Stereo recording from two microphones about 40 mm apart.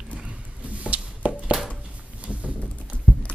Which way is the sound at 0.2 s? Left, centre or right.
Right.